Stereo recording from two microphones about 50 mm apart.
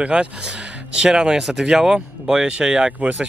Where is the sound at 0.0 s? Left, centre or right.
Right.